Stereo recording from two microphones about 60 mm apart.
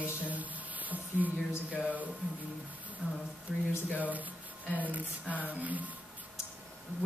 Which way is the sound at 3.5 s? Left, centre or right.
Centre.